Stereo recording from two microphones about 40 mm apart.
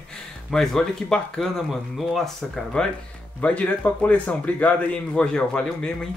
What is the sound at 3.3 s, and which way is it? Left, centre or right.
Speech, left.